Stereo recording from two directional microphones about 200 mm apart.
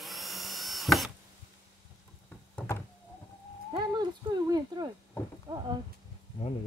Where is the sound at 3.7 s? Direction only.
20° right (ahead or behind).